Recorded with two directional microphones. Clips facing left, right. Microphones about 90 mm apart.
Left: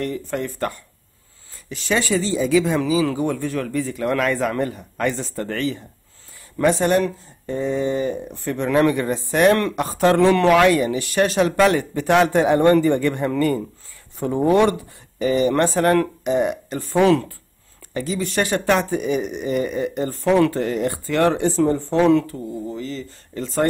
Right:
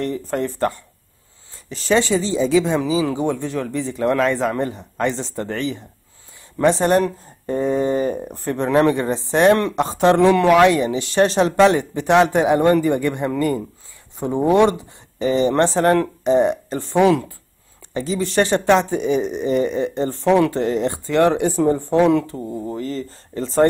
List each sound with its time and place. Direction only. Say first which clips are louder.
0.0 s speech: right 2 dB; 35° right (ahead or behind)
6.6 s speech: right 2 dB; 30° right (ahead or behind); by 17.3 s 15° right (ahead or behind)
17.9 s speech: right 3 dB; 25° right (ahead or behind)
22.7 s speech: right 3 dB; 45° right (ahead or behind)
23.3 s speech: right 5 dB; 30° right (ahead or behind)